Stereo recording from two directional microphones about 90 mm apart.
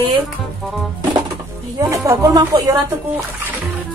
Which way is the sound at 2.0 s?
40° right (ahead or behind).